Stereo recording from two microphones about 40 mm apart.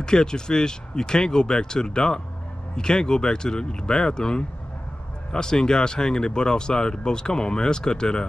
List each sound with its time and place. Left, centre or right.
0.0 s speech: centre